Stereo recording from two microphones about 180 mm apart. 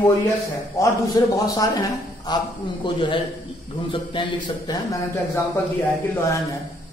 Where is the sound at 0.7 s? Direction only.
20° left (ahead or behind).